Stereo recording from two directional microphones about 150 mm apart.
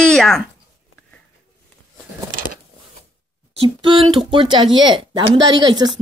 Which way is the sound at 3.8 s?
35° right (ahead or behind).